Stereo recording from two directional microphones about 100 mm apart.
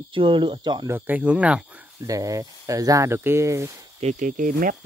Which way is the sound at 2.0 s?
35° right (ahead or behind).